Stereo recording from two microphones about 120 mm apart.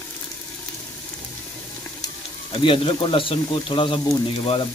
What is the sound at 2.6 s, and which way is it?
Speech, 50° left (ahead or behind).